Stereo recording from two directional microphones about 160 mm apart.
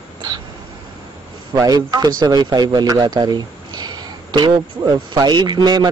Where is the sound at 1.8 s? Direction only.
25° right (ahead or behind).